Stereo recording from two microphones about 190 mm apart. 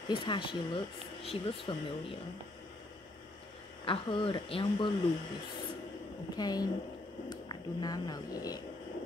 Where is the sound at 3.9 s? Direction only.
25° left (ahead or behind).